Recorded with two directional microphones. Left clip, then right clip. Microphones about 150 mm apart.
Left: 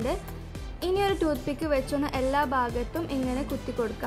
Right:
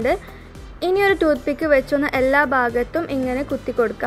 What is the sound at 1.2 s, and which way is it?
A woman's voice, 15° right (ahead or behind).